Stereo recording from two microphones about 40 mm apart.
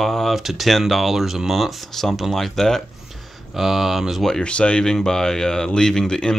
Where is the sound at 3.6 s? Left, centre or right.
Centre.